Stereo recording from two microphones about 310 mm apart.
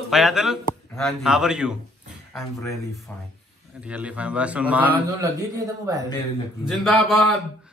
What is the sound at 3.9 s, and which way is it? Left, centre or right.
A man's voice, centre.